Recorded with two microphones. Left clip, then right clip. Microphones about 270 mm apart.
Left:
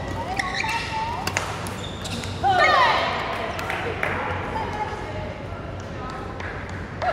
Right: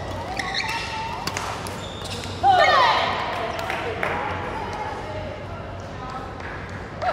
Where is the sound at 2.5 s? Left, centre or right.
Right.